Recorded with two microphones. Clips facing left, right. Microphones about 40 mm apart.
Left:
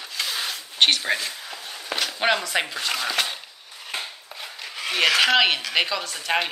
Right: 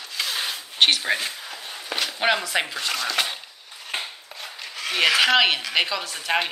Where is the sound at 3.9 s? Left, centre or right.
Right.